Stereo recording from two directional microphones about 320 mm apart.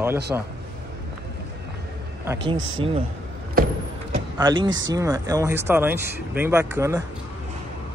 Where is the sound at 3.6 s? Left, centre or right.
Right.